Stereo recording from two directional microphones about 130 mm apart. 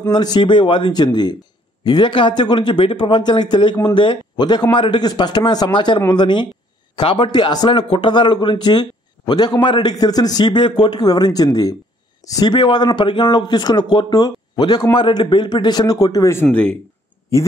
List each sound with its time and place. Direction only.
0.1 s speech: 35° left (ahead or behind)
16.4 s speech: 5° left (ahead or behind)